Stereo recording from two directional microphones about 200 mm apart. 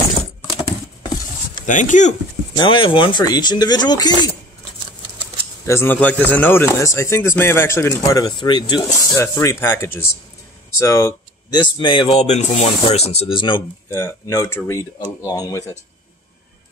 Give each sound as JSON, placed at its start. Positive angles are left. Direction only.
{"t": 1.7, "sound": "speech", "side_deg": 40}
{"t": 2.5, "sound": "speech", "side_deg": 25}
{"t": 5.7, "sound": "speech", "side_deg": 10}